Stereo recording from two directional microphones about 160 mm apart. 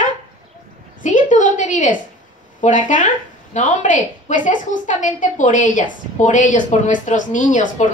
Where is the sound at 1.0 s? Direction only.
50° left (ahead or behind).